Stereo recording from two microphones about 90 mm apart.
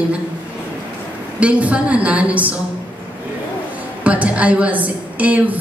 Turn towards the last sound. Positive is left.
turn(degrees=-15)  # may be behind; listen again after turning